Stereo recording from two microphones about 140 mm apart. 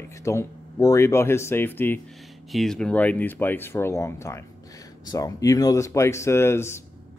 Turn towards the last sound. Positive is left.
turn(degrees=20)  # may be behind; listen again after turning